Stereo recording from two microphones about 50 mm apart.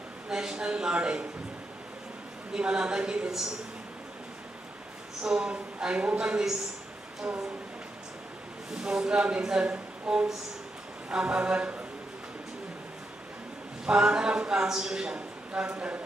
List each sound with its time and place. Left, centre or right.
0.3 s a man's voice: centre
2.5 s a woman's voice: centre
5.2 s a man's voice: centre
8.7 s a man's voice: centre
13.8 s a man's voice: centre